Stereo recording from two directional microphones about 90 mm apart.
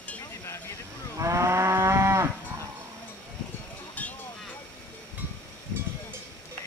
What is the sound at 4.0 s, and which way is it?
Vehicle, 15° left (ahead or behind).